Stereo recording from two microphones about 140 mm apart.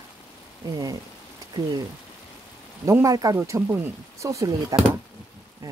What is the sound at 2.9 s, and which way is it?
Speech, 25° right (ahead or behind).